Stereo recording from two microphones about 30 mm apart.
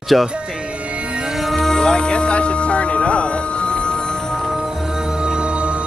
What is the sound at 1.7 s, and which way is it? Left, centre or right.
Music, left.